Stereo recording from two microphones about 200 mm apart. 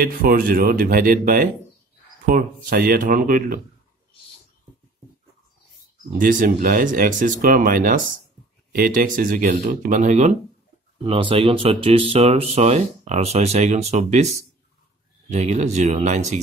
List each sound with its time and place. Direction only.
0.0 s speech: 45° right (ahead or behind)
6.1 s speech: 45° right (ahead or behind)
15.2 s speech: 35° right (ahead or behind)